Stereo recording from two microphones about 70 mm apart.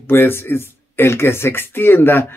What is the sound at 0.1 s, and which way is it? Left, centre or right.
Speech, left.